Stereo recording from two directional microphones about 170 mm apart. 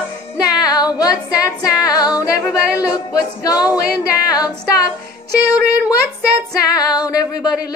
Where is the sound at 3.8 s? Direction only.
65° left (ahead or behind).